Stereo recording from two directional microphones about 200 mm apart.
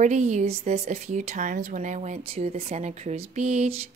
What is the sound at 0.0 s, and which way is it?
Speech, 35° right (ahead or behind).